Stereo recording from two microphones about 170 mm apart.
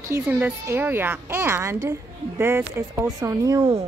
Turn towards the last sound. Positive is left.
turn(degrees=-20)  # may be behind; listen again after turning